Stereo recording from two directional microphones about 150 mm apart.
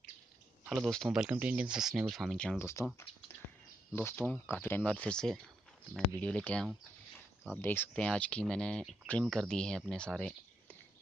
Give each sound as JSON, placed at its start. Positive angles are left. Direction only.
{"t": 0.7, "sound": "speech", "side_deg": 0}
{"t": 2.6, "sound": "speech", "side_deg": 20}